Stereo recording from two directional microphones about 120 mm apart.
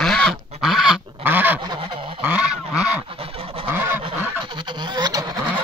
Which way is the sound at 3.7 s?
15° right (ahead or behind).